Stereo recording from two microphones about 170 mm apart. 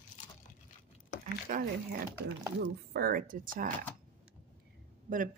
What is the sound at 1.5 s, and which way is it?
Speech, 60° right (ahead or behind).